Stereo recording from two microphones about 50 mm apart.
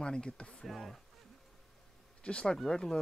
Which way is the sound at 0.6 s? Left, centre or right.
Centre.